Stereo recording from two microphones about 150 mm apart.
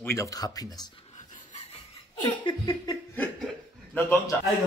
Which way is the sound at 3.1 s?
10° left (ahead or behind).